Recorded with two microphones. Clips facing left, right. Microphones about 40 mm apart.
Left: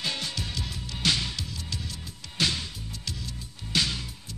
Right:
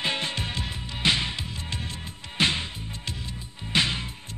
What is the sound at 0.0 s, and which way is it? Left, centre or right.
Music, right.